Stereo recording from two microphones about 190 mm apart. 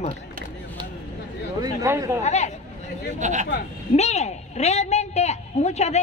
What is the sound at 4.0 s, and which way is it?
A woman's voice, 35° left (ahead or behind).